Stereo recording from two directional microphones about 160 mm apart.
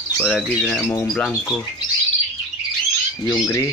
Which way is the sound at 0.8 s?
15° left (ahead or behind).